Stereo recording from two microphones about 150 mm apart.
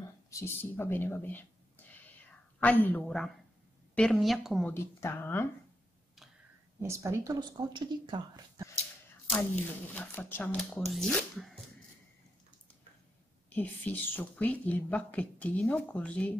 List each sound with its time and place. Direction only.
0.3 s a woman's voice: 15° left (ahead or behind); by 4.6 s centre (ahead or behind)
4.6 s a woman's voice: 15° left (ahead or behind)
6.8 s a woman's voice: 20° right (ahead or behind)
7.2 s a woman's voice: 30° right (ahead or behind)
9.9 s a woman's voice: 15° left (ahead or behind)
13.5 s a woman's voice: 10° left (ahead or behind)